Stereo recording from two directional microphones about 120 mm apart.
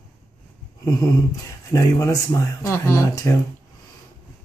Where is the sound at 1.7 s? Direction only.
30° left (ahead or behind).